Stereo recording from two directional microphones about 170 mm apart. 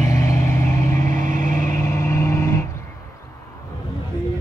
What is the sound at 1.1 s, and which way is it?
Vehicle, 50° right (ahead or behind).